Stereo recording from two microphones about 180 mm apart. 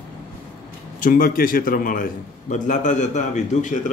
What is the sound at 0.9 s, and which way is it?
A man's voice, 50° left (ahead or behind).